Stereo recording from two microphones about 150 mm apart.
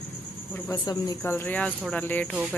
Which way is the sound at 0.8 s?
25° left (ahead or behind).